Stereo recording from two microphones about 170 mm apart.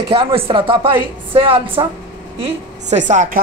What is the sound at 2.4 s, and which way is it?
A woman's voice, 45° right (ahead or behind).